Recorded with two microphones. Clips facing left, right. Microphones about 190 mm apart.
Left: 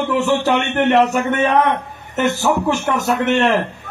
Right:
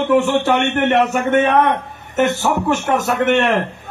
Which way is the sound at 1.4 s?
60° right (ahead or behind).